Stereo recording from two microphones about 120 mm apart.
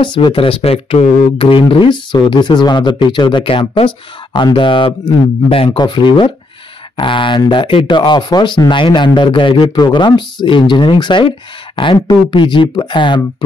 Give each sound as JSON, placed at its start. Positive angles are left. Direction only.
{"t": 0.0, "sound": "speech", "side_deg": 40}
{"t": 5.7, "sound": "speech", "side_deg": 35}